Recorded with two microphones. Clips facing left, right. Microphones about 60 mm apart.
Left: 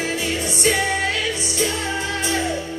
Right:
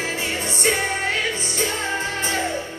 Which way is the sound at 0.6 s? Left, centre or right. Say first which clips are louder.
Left 2 dB; right.